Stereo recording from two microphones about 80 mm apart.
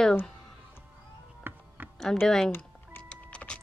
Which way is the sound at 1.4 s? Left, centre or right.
Right.